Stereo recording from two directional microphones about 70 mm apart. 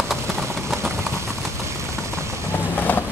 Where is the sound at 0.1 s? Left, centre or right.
Centre.